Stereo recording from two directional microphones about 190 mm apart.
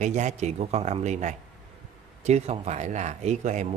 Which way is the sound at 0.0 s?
40° right (ahead or behind).